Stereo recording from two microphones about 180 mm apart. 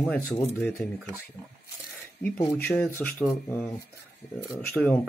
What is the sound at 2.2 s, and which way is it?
Speech, 10° left (ahead or behind).